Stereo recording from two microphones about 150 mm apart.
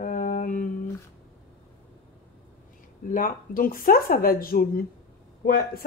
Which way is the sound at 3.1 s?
70° left (ahead or behind).